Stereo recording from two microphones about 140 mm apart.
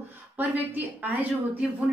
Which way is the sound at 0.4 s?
10° right (ahead or behind).